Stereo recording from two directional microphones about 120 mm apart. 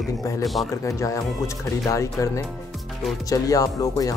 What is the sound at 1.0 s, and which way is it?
Speech, 25° left (ahead or behind).